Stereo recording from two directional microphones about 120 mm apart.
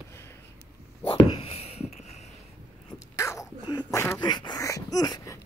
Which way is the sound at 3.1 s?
25° left (ahead or behind).